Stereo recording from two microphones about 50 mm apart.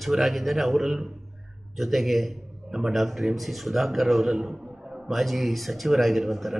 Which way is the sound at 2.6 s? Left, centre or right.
Centre.